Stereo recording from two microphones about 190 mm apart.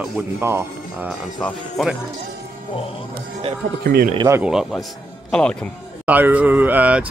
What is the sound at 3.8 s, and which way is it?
Speech, 55° right (ahead or behind).